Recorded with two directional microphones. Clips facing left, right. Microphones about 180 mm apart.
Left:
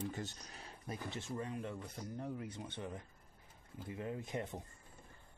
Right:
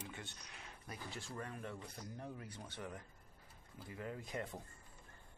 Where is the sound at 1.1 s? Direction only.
20° left (ahead or behind).